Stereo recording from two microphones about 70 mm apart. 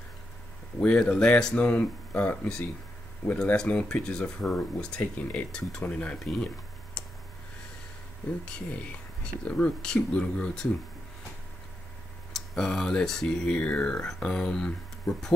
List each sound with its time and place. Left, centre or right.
0.7 s speech: centre
3.5 s speech: centre
5.5 s speech: centre
6.1 s tick-tock: centre
8.5 s speech: centre
12.3 s speech: centre
13.6 s speech: centre